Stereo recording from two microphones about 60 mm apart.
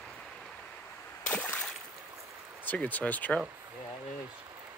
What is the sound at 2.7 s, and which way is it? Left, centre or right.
Speech, left.